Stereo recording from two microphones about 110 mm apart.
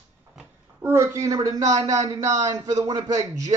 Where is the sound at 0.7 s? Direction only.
25° right (ahead or behind).